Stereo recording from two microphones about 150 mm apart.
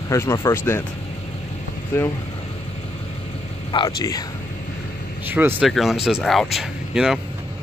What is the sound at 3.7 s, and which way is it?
Speech, 30° left (ahead or behind).